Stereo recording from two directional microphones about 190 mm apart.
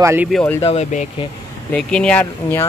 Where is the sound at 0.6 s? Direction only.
35° left (ahead or behind).